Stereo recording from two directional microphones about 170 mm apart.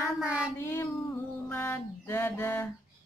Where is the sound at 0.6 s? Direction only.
15° left (ahead or behind).